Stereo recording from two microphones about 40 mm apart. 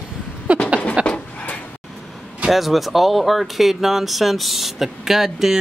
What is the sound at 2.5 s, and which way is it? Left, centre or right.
Speech, centre.